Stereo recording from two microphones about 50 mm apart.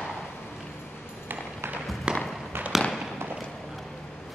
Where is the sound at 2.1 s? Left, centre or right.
Centre.